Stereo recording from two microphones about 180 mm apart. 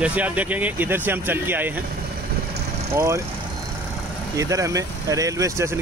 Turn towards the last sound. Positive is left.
turn(degrees=-15)  # may be behind; listen again after turning